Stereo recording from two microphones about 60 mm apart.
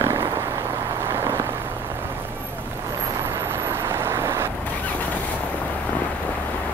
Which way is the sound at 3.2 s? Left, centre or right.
Right.